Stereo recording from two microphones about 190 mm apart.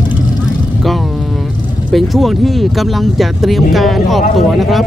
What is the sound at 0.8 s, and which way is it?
Vehicle, centre (ahead or behind).